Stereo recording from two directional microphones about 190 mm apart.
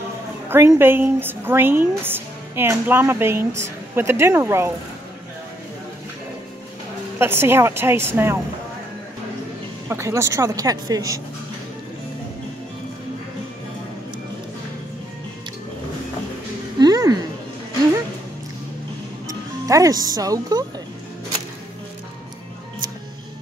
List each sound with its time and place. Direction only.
0.5 s a woman's voice: 10° right (ahead or behind)
7.2 s a woman's voice: 10° right (ahead or behind)
9.8 s a woman's voice: 15° right (ahead or behind)
16.7 s a sound: 20° right (ahead or behind)
19.2 s speech: 15° right (ahead or behind)